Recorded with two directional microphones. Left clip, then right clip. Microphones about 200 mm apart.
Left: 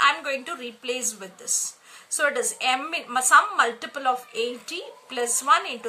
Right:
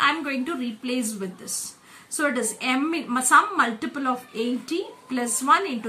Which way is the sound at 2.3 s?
30° left (ahead or behind).